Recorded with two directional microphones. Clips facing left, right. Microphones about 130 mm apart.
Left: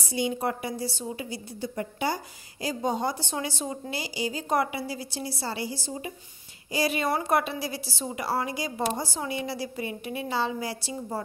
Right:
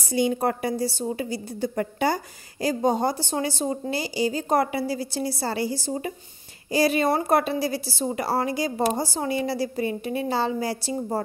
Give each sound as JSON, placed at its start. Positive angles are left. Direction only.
{"t": 0.1, "sound": "a woman's voice", "side_deg": -50}
{"t": 6.7, "sound": "a woman's voice", "side_deg": -35}